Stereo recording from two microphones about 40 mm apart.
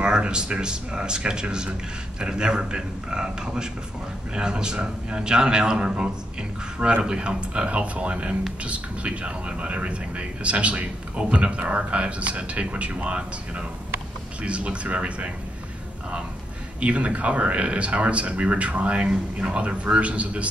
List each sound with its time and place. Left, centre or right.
0.0 s a man's voice: right
16.8 s speech: right